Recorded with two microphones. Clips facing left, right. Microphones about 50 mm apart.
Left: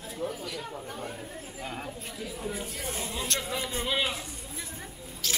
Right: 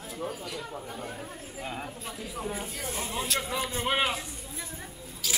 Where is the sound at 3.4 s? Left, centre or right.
Right.